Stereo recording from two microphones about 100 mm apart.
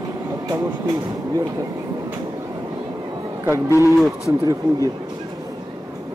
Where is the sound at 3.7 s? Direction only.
30° left (ahead or behind).